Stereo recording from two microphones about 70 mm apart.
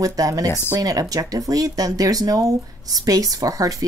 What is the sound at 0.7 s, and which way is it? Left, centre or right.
Speech, right.